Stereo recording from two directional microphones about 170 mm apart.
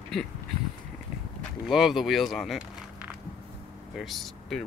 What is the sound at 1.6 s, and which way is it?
Speech, centre (ahead or behind).